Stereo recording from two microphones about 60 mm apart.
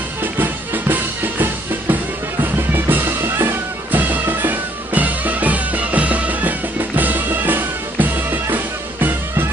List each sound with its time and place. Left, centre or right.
0.2 s music: right